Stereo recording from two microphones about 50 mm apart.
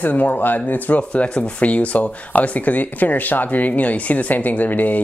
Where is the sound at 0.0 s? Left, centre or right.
Left.